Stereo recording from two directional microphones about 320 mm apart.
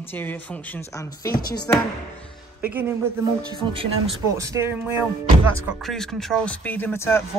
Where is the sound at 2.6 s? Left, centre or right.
Centre.